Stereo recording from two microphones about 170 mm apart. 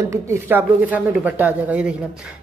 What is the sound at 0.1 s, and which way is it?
Speech, 15° right (ahead or behind).